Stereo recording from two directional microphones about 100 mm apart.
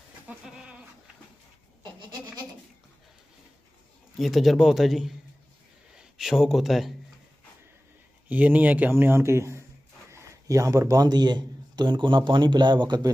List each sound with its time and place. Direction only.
0.5 s goat: 10° right (ahead or behind)
4.2 s a man's voice: centre (ahead or behind)
5.9 s a sound: 5° right (ahead or behind)
8.3 s a man's voice: 15° right (ahead or behind); by 13.1 s 50° right (ahead or behind)